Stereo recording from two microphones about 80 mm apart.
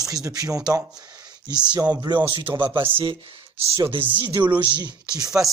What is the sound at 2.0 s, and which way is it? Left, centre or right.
Speech, right.